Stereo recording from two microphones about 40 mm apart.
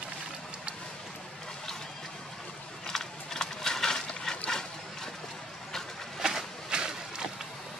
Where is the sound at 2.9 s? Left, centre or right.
Centre.